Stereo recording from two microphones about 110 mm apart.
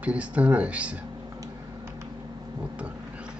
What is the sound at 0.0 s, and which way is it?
Speech, 10° right (ahead or behind).